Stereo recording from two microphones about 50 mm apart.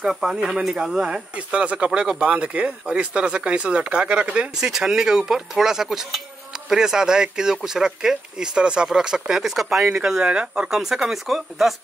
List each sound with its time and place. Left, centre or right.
0.0 s speech: centre
4.6 s speech: centre